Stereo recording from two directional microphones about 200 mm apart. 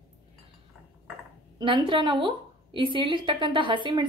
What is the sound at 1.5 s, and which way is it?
A woman's voice, 25° right (ahead or behind).